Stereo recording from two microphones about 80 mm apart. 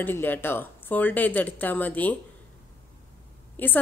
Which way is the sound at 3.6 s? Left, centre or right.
Left.